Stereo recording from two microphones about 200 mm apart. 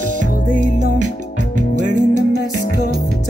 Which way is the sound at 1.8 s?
40° right (ahead or behind).